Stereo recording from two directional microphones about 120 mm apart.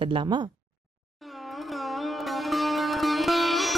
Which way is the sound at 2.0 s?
Centre (ahead or behind).